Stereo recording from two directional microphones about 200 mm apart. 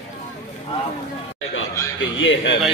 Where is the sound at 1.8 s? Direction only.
15° left (ahead or behind).